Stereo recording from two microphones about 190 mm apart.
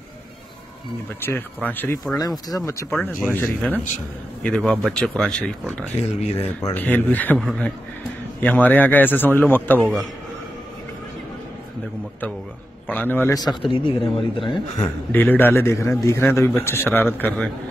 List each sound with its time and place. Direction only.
1.2 s a man's voice: 10° left (ahead or behind)
2.9 s a man's voice: centre (ahead or behind)
12.8 s speech: 10° left (ahead or behind); by 14.9 s 25° left (ahead or behind)
15.1 s a man's voice: 10° left (ahead or behind)